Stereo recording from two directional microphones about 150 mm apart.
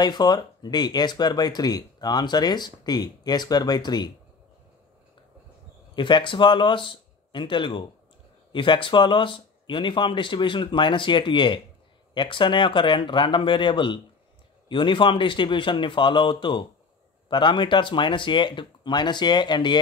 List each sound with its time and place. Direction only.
0.0 s speech: 30° left (ahead or behind)
5.9 s speech: 30° left (ahead or behind)